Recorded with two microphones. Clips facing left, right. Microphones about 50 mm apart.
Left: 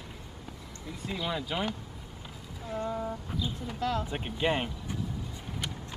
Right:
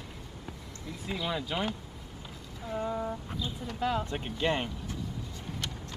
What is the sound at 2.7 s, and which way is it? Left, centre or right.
Speech, centre.